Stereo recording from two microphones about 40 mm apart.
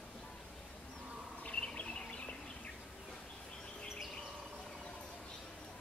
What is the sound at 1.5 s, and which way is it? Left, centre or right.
Bird, left.